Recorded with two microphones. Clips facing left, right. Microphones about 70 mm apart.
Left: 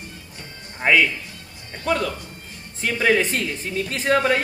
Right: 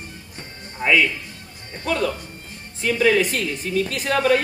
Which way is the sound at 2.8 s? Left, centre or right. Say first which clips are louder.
Right 1 dB; left.